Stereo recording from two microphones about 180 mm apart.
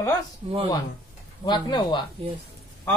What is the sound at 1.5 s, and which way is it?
Speech, 25° left (ahead or behind).